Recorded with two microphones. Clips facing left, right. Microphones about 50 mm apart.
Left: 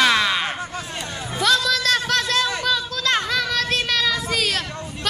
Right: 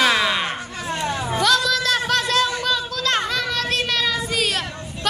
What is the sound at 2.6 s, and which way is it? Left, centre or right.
Child singing, centre.